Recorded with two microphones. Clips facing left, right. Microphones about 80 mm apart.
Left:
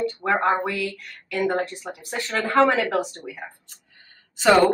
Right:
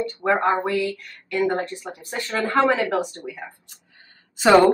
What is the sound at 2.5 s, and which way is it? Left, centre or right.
Speech, centre.